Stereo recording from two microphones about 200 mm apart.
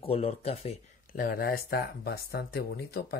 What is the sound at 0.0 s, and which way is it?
Speech, 30° left (ahead or behind).